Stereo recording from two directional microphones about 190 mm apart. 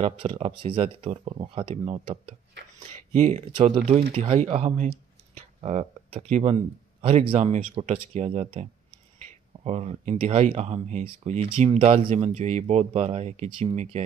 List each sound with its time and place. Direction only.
0.0 s speech: 30° right (ahead or behind)